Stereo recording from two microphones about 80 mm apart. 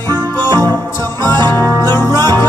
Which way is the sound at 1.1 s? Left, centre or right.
Right.